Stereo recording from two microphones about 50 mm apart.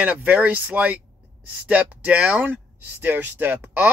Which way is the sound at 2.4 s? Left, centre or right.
Right.